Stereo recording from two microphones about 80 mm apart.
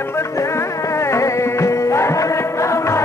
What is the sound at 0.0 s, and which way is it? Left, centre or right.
Music, left.